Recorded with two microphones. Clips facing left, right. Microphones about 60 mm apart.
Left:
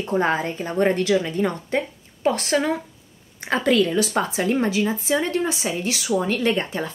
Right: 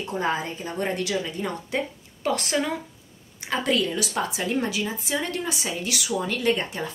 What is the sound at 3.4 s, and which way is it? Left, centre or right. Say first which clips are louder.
Speech: left 5 dB; left.